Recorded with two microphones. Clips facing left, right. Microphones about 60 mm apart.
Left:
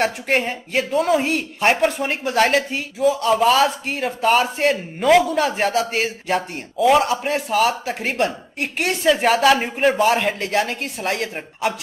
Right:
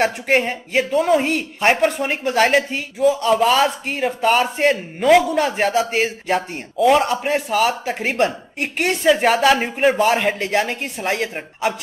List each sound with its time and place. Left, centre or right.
0.0 s speech: centre